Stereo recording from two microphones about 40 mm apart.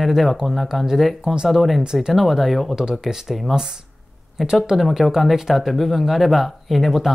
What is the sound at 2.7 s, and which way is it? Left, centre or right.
Speech, centre.